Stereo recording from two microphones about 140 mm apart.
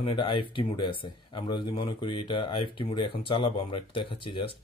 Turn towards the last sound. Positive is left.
turn(degrees=40)  # may be behind; listen again after turning